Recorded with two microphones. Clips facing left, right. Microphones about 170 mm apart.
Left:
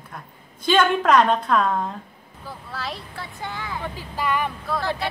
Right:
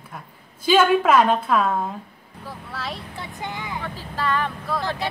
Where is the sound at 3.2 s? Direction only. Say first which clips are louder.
Right 1 dB; 20° right (ahead or behind).